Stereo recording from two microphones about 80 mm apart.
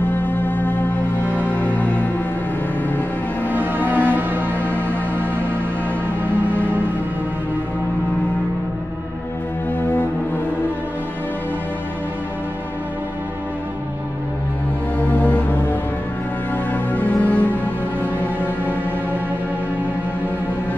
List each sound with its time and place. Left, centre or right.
0.1 s music: left
3.4 s music: right
15.0 s music: left